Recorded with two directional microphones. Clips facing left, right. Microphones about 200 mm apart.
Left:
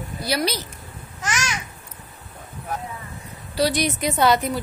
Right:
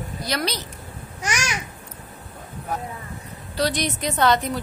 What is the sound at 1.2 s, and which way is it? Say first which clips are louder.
Babbling: even; 15° right (ahead or behind).